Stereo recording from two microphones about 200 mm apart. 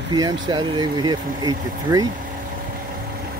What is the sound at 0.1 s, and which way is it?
Speech, 20° right (ahead or behind).